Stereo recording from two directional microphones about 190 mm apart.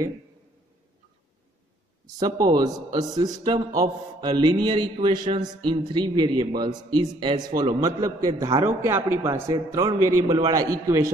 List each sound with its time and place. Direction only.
2.4 s a man's voice: 20° right (ahead or behind)